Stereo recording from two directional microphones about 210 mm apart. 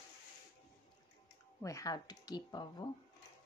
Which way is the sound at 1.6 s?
15° left (ahead or behind).